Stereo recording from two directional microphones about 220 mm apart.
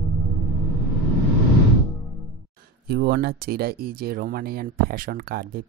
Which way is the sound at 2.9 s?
45° right (ahead or behind).